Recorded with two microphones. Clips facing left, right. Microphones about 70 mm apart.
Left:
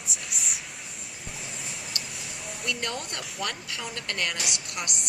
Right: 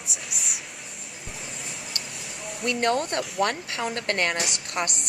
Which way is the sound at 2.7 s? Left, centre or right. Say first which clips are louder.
Right 9 dB; right.